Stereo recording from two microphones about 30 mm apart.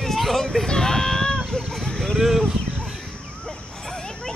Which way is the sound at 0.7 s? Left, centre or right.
Centre.